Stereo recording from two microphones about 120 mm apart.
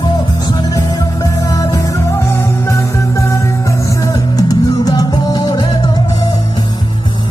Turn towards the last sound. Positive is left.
turn(degrees=35)  # may be behind; listen again after turning